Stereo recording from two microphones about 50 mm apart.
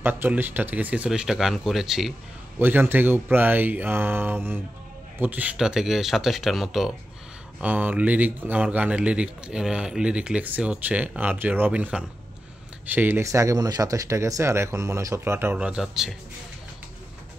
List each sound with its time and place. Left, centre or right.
0.0 s speech: right
1.0 s speech: centre
2.6 s speech: right
5.2 s speech: right
5.6 s speech: centre
7.6 s a man's voice: right
11.9 s speech: centre
12.8 s speech: right
13.2 s speech: right
15.5 s a man's voice: right
15.8 s speech: centre